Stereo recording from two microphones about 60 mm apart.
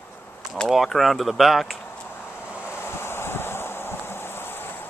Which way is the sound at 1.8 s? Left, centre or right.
Left.